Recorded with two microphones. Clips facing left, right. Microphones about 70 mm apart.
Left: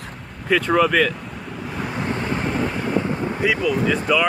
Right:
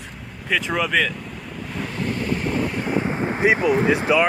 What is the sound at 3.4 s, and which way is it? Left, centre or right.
Speech, right.